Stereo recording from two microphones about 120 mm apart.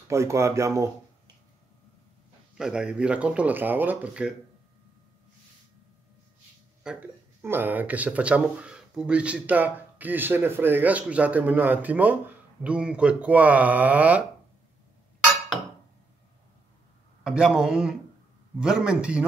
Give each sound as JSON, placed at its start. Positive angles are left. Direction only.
{"t": 0.1, "sound": "speech", "side_deg": -25}
{"t": 2.5, "sound": "speech", "side_deg": -5}
{"t": 6.8, "sound": "speech", "side_deg": -5}
{"t": 17.2, "sound": "speech", "side_deg": -5}